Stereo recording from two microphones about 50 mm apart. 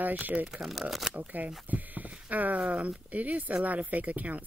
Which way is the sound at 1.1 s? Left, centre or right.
Right.